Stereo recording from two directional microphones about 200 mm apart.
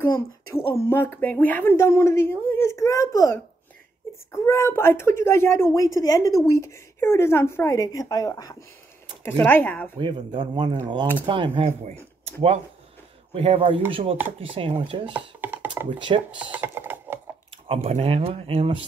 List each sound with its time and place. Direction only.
0.6 s speech: 10° left (ahead or behind)
9.9 s speech: 25° right (ahead or behind)
13.3 s speech: 30° right (ahead or behind)
15.1 s speech: 10° right (ahead or behind)
16.1 s speech: 30° right (ahead or behind)
16.5 s speech: 10° right (ahead or behind)
17.6 s speech: 30° right (ahead or behind)